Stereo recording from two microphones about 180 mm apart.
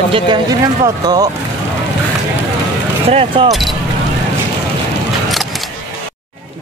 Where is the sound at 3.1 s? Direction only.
30° right (ahead or behind).